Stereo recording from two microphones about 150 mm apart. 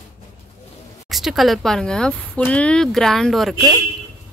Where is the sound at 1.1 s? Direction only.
Centre (ahead or behind).